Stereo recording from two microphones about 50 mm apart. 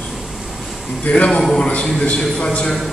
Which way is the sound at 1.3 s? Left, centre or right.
Centre.